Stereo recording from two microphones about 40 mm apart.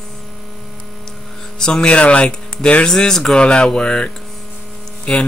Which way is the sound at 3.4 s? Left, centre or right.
Left.